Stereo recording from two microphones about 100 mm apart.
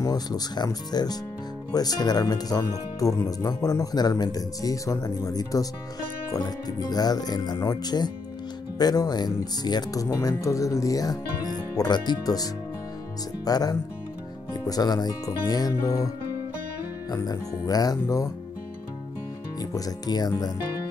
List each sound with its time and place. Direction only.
0.0 s speech: 40° left (ahead or behind)
13.5 s speech: 40° left (ahead or behind)
17.1 s speech: 40° left (ahead or behind)
19.6 s speech: 40° left (ahead or behind)